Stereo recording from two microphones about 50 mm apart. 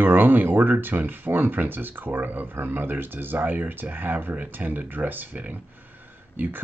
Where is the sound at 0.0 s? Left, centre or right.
Right.